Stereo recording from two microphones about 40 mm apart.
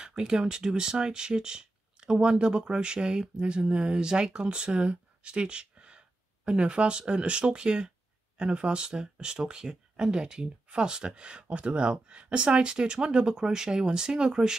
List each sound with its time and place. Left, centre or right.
0.0 s speech: centre